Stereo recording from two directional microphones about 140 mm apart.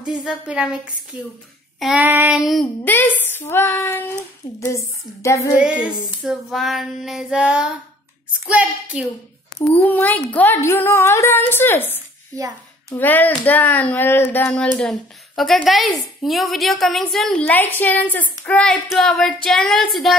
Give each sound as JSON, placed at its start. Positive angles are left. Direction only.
{"t": 0.0, "sound": "a woman's voice", "side_deg": -5}
{"t": 2.4, "sound": "female singing", "side_deg": 0}
{"t": 2.8, "sound": "speech", "side_deg": 15}
{"t": 4.6, "sound": "a sound", "side_deg": 20}
{"t": 5.6, "sound": "female singing", "side_deg": -5}
{"t": 8.5, "sound": "a woman's voice", "side_deg": -5}
{"t": 9.8, "sound": "speech", "side_deg": 10}
{"t": 16.2, "sound": "female singing", "side_deg": 0}